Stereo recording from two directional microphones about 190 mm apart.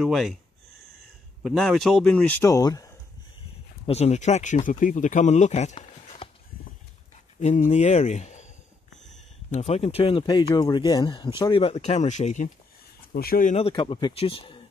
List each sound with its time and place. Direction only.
0.0 s speech: centre (ahead or behind)
1.4 s speech: centre (ahead or behind)
2.4 s speech: 15° left (ahead or behind)
3.8 s speech: 35° left (ahead or behind)
7.3 s speech: 35° left (ahead or behind)
9.5 s speech: 35° left (ahead or behind)
13.1 s speech: 50° left (ahead or behind)
13.6 s speech: 30° left (ahead or behind)